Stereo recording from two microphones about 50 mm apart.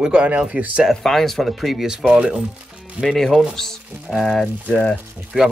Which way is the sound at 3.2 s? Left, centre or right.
Centre.